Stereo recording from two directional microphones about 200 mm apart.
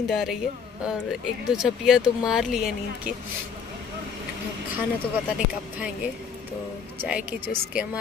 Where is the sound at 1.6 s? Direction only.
5° right (ahead or behind).